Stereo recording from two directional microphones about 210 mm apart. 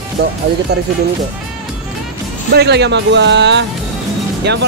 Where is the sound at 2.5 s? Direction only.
55° right (ahead or behind).